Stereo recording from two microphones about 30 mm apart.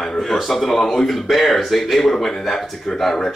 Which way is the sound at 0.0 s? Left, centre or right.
Centre.